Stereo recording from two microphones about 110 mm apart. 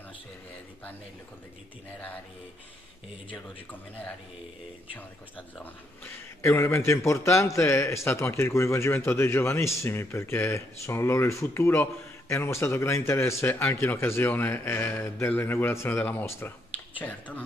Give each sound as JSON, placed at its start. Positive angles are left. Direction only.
{"t": 5.6, "sound": "a man's voice", "side_deg": 20}